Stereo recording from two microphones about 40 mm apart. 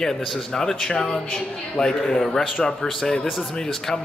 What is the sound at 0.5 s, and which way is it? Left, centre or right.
Speech, centre.